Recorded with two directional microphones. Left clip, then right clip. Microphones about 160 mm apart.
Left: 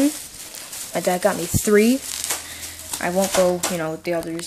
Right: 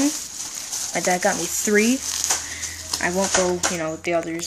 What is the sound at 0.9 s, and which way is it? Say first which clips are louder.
Speech: left 1 dB; 15° left (ahead or behind).